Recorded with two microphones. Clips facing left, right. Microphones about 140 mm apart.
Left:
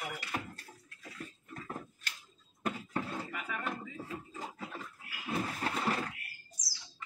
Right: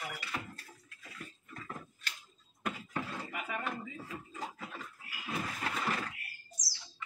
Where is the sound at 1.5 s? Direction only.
35° left (ahead or behind).